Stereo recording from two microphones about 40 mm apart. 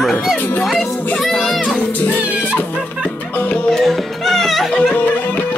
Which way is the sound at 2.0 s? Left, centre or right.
Left.